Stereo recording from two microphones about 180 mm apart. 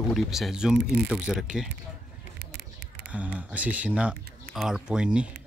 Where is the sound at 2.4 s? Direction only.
70° right (ahead or behind).